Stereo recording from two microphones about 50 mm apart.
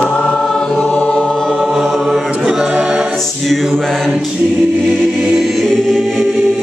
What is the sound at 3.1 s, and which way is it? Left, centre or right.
Choir, centre.